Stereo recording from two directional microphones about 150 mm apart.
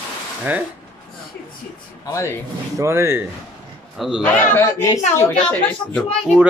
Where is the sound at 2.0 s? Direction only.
20° left (ahead or behind).